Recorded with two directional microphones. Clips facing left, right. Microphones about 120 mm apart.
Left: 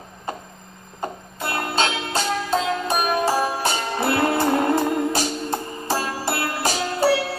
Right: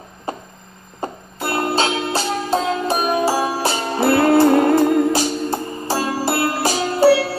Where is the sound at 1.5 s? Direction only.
30° right (ahead or behind).